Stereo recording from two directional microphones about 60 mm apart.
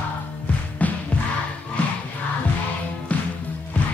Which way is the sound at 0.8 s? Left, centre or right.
Left.